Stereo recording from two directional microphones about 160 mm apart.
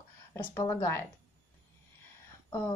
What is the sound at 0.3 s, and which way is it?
Speech, 15° left (ahead or behind).